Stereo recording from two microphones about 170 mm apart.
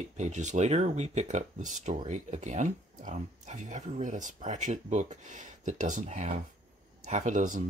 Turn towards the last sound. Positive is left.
turn(degrees=-50)  # may be behind; listen again after turning